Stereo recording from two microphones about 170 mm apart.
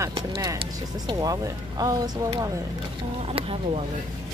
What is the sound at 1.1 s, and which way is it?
Speech, 20° right (ahead or behind).